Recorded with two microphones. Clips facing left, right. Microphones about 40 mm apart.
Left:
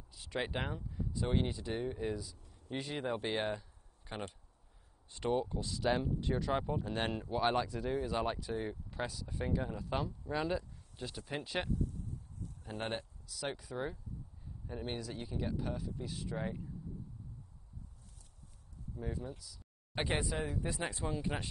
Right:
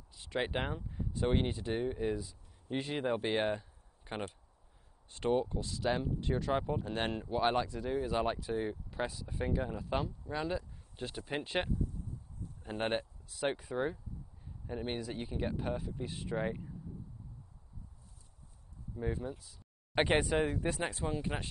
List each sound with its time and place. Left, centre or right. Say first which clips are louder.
0.1 s a sound: right 3 dB; centre
0.5 s speech: right 3 dB; centre
0.8 s speech: right 4 dB; right
1.4 s speech: right 3 dB; centre
11.0 s speech: right 3 dB; right
12.7 s speech: right 5 dB; right
18.9 s speech: right 5 dB; right
20.8 s speech: right 2 dB; centre